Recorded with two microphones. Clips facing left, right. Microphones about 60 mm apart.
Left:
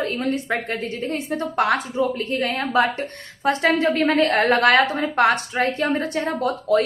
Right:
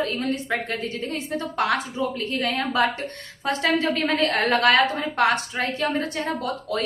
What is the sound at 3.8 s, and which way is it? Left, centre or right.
Speech, left.